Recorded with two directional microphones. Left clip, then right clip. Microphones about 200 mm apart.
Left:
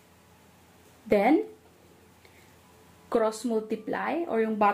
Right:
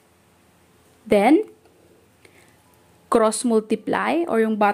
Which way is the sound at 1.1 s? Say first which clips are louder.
Right 6 dB; 35° right (ahead or behind).